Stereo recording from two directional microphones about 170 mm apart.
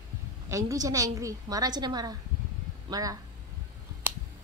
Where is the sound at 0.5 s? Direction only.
20° right (ahead or behind).